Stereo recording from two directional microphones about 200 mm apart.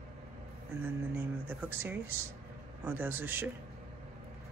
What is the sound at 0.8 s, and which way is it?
Speech, 10° right (ahead or behind).